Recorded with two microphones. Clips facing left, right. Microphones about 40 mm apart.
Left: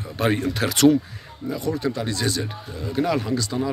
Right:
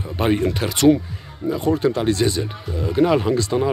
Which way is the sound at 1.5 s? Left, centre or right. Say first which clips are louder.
Right 6 dB; right.